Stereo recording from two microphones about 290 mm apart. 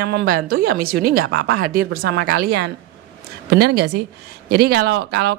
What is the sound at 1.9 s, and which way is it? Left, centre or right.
A woman's voice, right.